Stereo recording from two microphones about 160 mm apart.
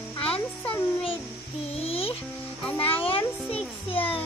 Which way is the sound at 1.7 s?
40° left (ahead or behind).